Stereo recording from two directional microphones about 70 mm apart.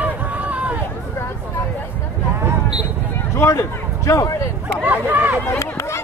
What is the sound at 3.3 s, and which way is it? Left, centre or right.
Speech, left.